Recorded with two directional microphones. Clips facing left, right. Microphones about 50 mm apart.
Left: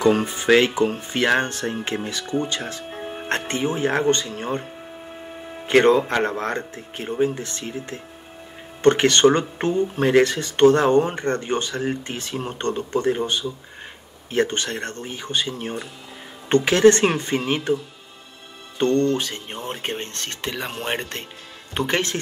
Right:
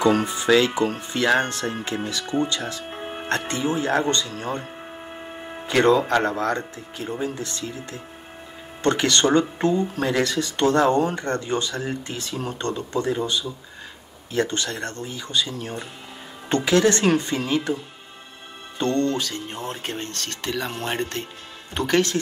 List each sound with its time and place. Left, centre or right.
0.1 s speech: left
2.9 s music: right
3.3 s speech: left
5.7 s speech: left
18.8 s speech: left